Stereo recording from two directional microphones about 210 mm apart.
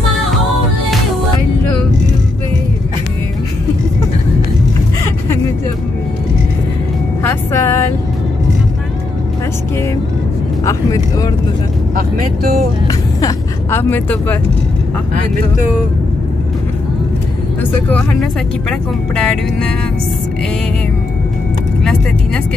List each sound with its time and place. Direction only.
7.2 s vehicle: 10° left (ahead or behind)
10.6 s vehicle: 15° left (ahead or behind)
11.9 s speech: 40° right (ahead or behind)
12.8 s vehicle: 15° left (ahead or behind)
17.6 s speech: 5° left (ahead or behind)